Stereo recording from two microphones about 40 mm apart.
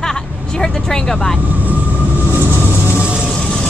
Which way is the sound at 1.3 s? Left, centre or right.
Right.